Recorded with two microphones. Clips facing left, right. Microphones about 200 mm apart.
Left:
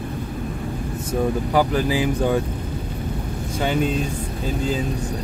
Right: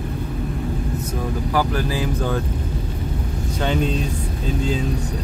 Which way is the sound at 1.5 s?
15° left (ahead or behind).